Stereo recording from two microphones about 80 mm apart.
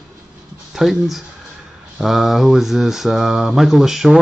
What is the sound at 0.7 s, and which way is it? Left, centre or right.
Mantra, centre.